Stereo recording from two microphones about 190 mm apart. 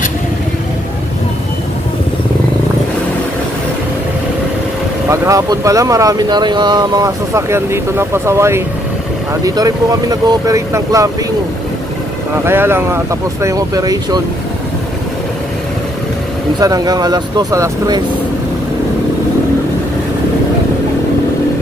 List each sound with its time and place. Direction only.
5.1 s speech: 15° right (ahead or behind)
12.4 s speech: 10° right (ahead or behind)
16.5 s speech: 20° right (ahead or behind)